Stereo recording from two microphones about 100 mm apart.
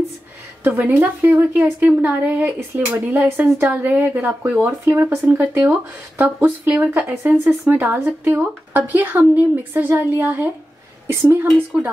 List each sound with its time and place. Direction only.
0.7 s a woman's voice: 20° right (ahead or behind)